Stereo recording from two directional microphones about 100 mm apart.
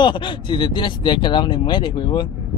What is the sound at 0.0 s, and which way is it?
Speech, 55° left (ahead or behind).